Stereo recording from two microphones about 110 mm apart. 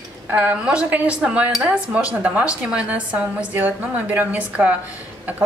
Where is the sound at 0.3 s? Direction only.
15° right (ahead or behind).